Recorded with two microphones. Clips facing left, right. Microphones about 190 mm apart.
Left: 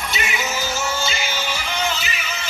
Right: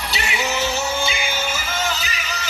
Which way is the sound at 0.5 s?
60° right (ahead or behind).